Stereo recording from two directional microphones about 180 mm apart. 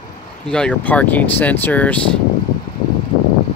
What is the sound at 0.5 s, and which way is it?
Speech, 5° left (ahead or behind).